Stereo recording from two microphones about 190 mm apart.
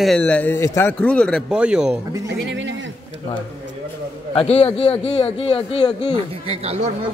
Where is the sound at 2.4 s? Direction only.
70° right (ahead or behind).